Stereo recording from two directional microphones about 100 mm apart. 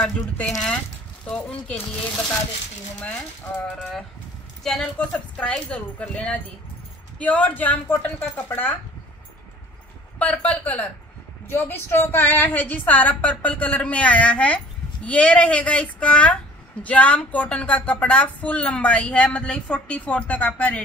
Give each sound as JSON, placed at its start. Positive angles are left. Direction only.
{"t": 0.0, "sound": "speech", "side_deg": 5}
{"t": 3.5, "sound": "a sound", "side_deg": 5}
{"t": 4.6, "sound": "speech", "side_deg": 10}
{"t": 10.1, "sound": "speech", "side_deg": 15}